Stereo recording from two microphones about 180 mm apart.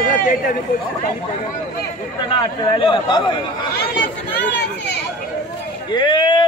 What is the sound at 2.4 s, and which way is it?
A man's voice, 25° left (ahead or behind).